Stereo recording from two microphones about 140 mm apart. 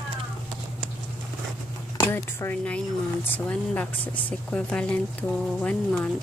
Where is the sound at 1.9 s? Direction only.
20° left (ahead or behind).